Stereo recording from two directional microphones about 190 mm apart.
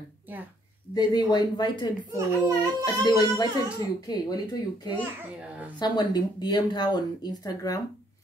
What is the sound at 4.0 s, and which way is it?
Speech, 20° left (ahead or behind).